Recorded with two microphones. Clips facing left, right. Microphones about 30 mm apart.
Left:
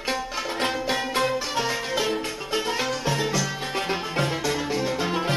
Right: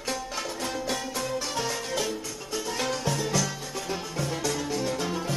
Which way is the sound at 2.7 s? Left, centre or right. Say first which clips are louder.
Left 3 dB; centre.